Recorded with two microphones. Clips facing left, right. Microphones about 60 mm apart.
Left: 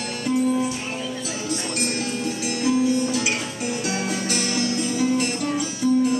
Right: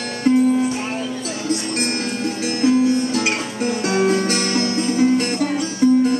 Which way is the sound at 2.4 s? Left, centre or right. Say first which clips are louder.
Right 5 dB; right.